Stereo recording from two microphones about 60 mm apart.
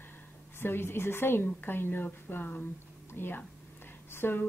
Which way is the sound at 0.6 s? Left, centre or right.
Left.